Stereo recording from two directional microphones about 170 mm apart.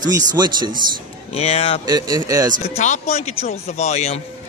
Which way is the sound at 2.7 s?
40° left (ahead or behind).